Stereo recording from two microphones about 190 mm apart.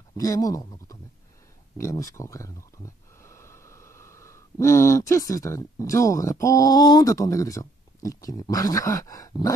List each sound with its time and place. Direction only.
0.2 s speech: 20° left (ahead or behind)